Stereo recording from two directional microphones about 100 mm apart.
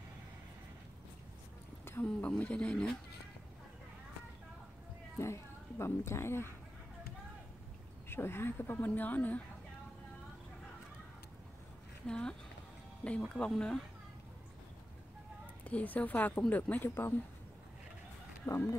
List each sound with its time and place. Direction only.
1.9 s speech: 15° left (ahead or behind)
5.2 s speech: 30° left (ahead or behind)
8.1 s speech: 25° left (ahead or behind)
12.1 s speech: 10° left (ahead or behind)
15.6 s speech: 15° left (ahead or behind)
18.4 s speech: 25° left (ahead or behind)